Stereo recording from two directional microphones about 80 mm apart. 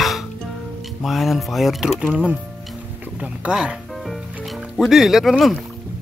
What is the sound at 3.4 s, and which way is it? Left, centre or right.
Speech, centre.